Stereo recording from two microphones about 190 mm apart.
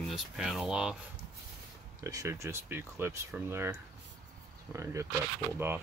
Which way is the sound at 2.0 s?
15° right (ahead or behind).